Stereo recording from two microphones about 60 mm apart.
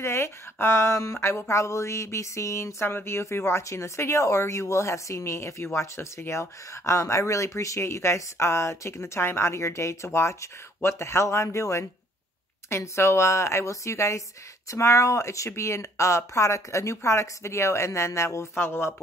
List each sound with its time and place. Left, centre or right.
0.0 s speech: left